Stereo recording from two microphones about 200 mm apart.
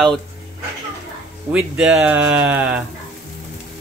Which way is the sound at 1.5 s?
5° right (ahead or behind).